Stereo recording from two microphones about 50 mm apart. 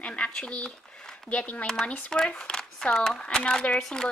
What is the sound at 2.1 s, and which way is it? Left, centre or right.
Speech, centre.